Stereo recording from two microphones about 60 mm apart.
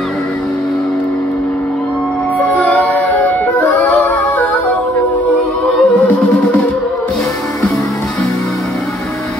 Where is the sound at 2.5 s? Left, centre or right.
Left.